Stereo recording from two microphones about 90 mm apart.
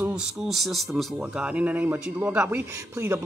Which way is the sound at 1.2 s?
15° right (ahead or behind).